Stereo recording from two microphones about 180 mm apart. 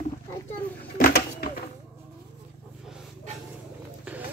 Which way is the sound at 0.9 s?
55° left (ahead or behind).